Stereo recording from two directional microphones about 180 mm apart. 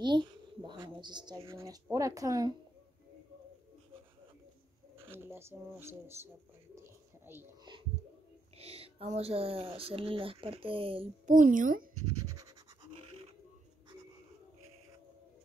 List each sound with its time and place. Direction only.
0.0 s speech: 25° right (ahead or behind)
5.1 s speech: 15° right (ahead or behind)
8.5 s speech: 35° right (ahead or behind)
11.2 s a woman's voice: 50° right (ahead or behind)